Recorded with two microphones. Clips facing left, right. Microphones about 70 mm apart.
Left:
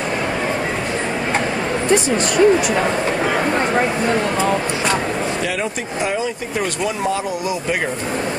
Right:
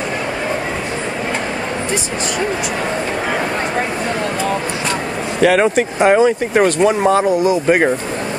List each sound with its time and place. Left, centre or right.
5.4 s speech: right